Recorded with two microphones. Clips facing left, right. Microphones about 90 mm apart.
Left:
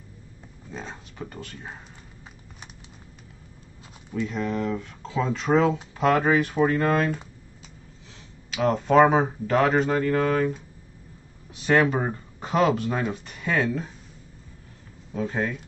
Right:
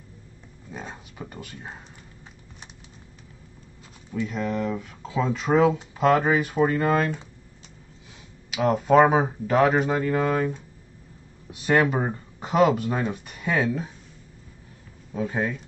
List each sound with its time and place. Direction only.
0.7 s speech: 10° right (ahead or behind)
4.2 s speech: 5° right (ahead or behind)
8.5 s speech: 5° right (ahead or behind)
11.6 s speech: 5° right (ahead or behind)
15.1 s speech: 5° right (ahead or behind)